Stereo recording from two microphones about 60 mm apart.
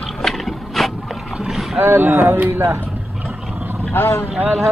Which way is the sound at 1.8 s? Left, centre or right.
Right.